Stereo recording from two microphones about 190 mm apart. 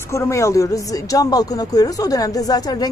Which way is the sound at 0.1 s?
15° left (ahead or behind).